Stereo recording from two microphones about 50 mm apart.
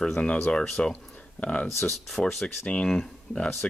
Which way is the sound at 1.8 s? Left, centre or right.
Centre.